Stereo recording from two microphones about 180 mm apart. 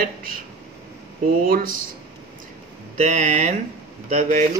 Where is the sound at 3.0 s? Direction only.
40° right (ahead or behind).